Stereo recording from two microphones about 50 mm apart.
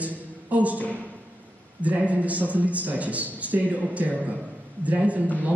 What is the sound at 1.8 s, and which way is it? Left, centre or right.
A woman's voice, right.